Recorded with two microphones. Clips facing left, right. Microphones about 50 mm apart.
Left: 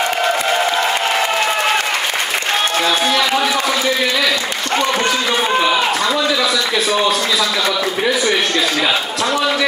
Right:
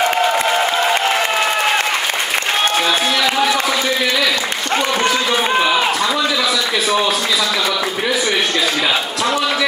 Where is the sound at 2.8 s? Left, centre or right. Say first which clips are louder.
Left 1 dB; centre.